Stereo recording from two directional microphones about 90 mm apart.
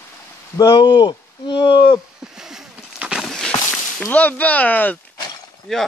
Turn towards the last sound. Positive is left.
turn(degrees=5)  # may be behind; listen again after turning